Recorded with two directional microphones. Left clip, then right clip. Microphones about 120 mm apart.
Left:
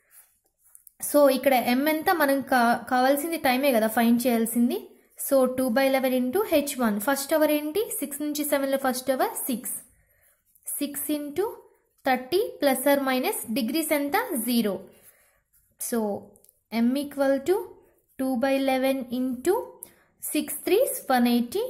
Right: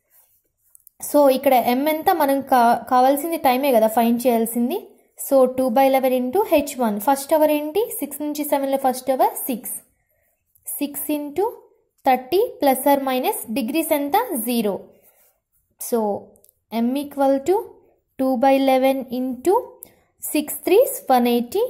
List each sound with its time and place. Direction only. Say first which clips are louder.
0.9 s a woman's voice: right 4 dB; 20° right (ahead or behind)
15.8 s a sound: right 7 dB; 25° right (ahead or behind)
16.8 s a woman's voice: right 5 dB; 25° right (ahead or behind)
18.1 s a woman's voice: right 8 dB; 35° right (ahead or behind)